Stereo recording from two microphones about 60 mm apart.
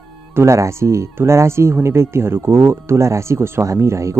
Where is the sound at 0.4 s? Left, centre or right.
Right.